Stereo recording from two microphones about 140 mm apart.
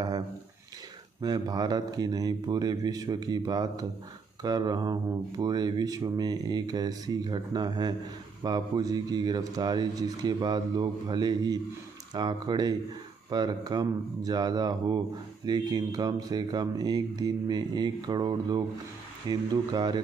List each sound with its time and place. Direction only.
1.2 s a man's voice: 30° right (ahead or behind)